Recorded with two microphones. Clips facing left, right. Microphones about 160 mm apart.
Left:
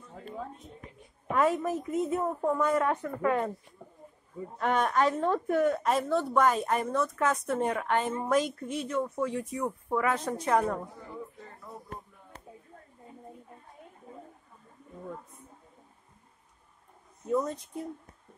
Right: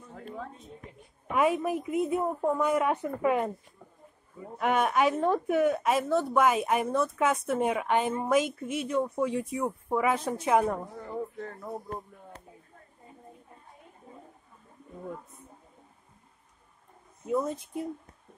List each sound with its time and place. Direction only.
1.3 s a woman's voice: 10° right (ahead or behind)
4.6 s a woman's voice: 5° right (ahead or behind)
11.1 s a sound: 60° right (ahead or behind)
17.3 s a woman's voice: 5° right (ahead or behind)